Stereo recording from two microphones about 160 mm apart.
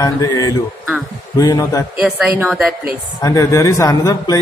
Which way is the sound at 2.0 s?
10° right (ahead or behind).